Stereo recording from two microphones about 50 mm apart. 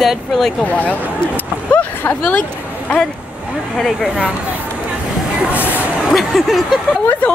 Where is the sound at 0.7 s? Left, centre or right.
Left.